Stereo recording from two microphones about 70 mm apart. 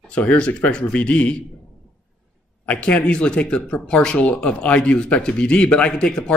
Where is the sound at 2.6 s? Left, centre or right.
Centre.